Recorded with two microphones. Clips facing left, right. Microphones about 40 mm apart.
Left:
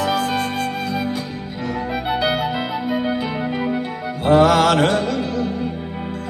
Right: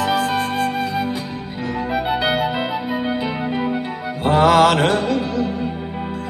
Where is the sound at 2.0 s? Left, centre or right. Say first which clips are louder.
Right 1 dB; centre.